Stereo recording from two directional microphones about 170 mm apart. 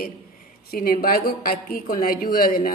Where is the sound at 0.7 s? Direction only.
60° left (ahead or behind).